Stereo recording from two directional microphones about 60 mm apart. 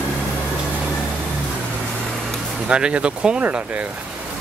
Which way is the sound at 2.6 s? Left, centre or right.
Centre.